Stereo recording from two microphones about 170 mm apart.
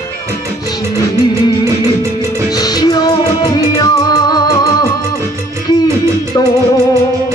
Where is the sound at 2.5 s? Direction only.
20° left (ahead or behind).